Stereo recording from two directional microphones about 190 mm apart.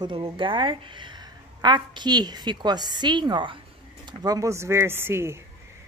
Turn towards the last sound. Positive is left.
turn(degrees=-15)  # may be behind; listen again after turning